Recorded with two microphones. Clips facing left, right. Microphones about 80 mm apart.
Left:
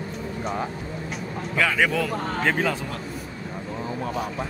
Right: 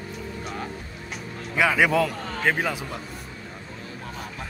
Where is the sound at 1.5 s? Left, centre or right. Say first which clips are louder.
Right 2 dB; centre.